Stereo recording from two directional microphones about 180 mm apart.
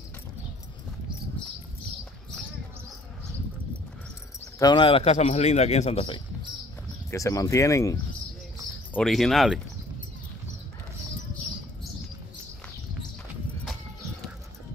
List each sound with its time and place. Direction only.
4.6 s a man's voice: 25° left (ahead or behind)
7.1 s speech: 15° left (ahead or behind)
8.9 s speech: 5° left (ahead or behind)